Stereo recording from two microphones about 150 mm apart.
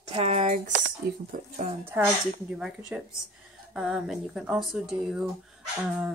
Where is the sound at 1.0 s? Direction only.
90° right.